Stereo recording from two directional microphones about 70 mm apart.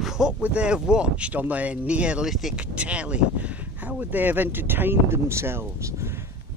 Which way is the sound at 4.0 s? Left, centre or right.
Right.